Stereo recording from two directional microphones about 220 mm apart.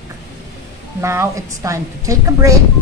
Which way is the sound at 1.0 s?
10° right (ahead or behind).